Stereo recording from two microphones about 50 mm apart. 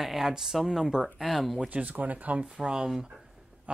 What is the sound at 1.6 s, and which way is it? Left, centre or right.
Speech, right.